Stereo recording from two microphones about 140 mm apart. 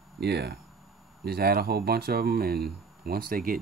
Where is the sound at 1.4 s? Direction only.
90° right.